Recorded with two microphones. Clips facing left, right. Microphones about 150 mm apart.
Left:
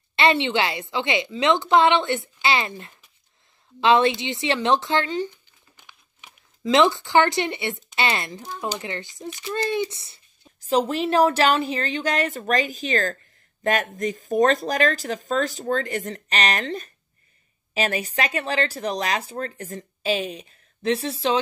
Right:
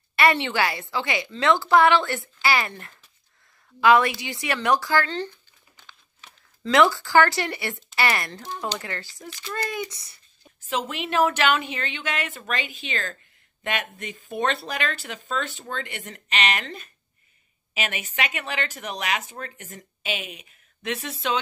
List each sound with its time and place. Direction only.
0.1 s a woman's voice: 25° left (ahead or behind)
3.8 s a woman's voice: 25° left (ahead or behind)
5.1 s crumpling: 15° left (ahead or behind)
7.9 s speech: 20° left (ahead or behind)